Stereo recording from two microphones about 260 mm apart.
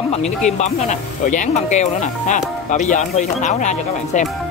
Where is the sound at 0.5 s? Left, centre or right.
Left.